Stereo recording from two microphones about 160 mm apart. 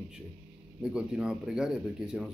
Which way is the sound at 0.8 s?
5° right (ahead or behind).